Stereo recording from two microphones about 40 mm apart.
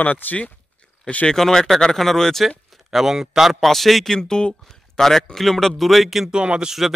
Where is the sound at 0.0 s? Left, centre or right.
Left.